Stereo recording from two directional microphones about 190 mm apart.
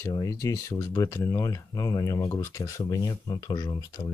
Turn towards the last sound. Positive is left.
turn(degrees=20)  # may be behind; listen again after turning